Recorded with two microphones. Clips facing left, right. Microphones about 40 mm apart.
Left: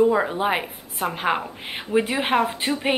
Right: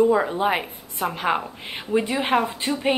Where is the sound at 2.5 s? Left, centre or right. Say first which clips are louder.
Left 1 dB; left.